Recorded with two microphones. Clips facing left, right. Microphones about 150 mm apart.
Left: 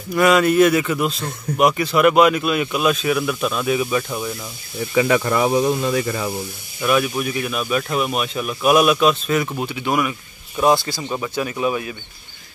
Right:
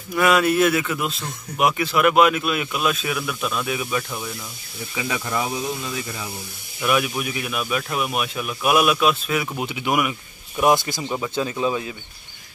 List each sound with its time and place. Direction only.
0.1 s a man's voice: centre (ahead or behind)
4.9 s speech: 60° left (ahead or behind)
6.8 s a man's voice: 5° right (ahead or behind); by 11.5 s 25° right (ahead or behind)